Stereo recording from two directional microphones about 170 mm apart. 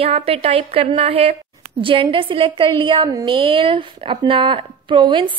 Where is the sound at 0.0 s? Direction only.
35° right (ahead or behind).